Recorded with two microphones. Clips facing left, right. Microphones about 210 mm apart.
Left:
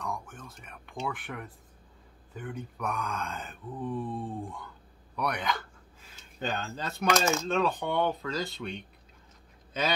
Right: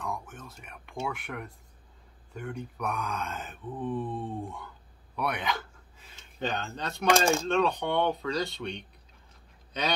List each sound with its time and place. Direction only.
0.0 s whispering: centre (ahead or behind)
1.0 s speech: centre (ahead or behind)
5.1 s a sound: centre (ahead or behind)
7.2 s speech: 30° right (ahead or behind)
7.4 s speech: centre (ahead or behind)